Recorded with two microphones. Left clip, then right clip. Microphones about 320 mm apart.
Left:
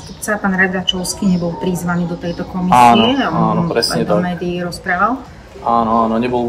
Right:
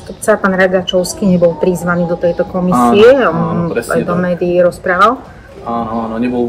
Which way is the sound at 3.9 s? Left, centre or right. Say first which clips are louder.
Right 3 dB; centre.